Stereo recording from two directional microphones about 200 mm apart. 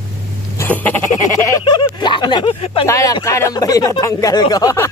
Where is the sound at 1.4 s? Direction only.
20° left (ahead or behind).